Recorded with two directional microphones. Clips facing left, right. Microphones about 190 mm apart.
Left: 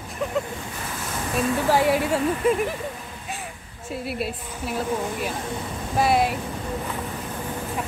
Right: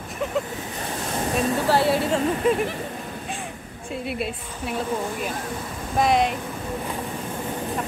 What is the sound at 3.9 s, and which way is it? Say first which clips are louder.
Speech: even; centre (ahead or behind).